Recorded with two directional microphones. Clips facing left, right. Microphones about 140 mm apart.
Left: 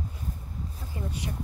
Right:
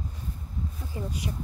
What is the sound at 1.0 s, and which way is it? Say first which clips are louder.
Speech: right 1 dB; 25° right (ahead or behind).